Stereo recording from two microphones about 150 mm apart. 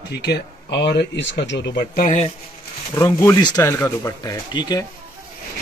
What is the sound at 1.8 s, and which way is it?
Speech, 55° left (ahead or behind).